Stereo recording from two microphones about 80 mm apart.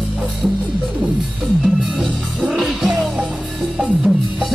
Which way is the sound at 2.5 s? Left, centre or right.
Centre.